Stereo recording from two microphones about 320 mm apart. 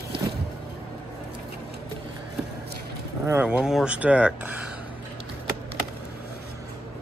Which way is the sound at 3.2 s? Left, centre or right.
Centre.